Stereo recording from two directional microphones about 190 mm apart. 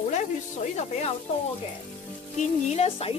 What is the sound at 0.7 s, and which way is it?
Speech, 35° left (ahead or behind).